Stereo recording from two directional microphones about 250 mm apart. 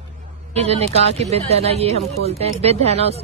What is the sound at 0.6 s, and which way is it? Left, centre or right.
Speech, right.